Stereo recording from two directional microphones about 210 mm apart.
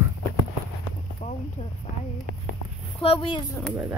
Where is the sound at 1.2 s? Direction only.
35° left (ahead or behind).